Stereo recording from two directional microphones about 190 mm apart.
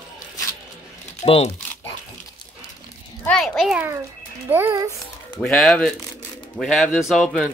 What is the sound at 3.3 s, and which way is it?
A child's voice, 5° left (ahead or behind).